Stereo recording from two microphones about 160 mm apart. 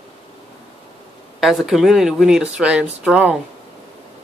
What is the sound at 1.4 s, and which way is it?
Speech, centre (ahead or behind).